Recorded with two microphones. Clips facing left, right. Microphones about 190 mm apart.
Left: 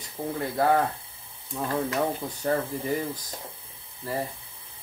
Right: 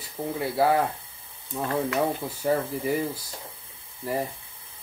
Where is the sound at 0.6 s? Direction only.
5° right (ahead or behind).